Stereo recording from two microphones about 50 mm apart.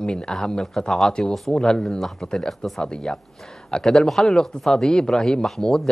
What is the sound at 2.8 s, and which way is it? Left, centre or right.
Speech, centre.